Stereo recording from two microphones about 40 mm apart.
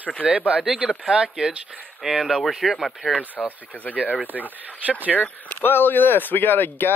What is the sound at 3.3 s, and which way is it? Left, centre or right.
Speech, left.